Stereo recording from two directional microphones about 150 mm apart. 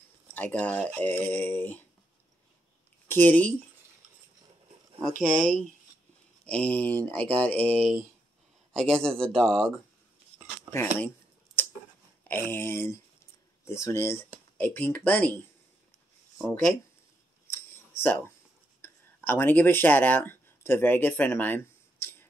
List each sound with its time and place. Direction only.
0.3 s speech: 10° left (ahead or behind)
3.1 s speech: 10° left (ahead or behind)
5.1 s speech: 60° right (ahead or behind)
5.4 s speech: 5° left (ahead or behind)
10.7 s speech: 15° left (ahead or behind)
12.3 s speech: 15° left (ahead or behind)
17.9 s speech: 15° left (ahead or behind)